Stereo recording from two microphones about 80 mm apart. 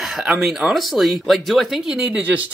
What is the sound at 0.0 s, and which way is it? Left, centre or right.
Chicken, centre.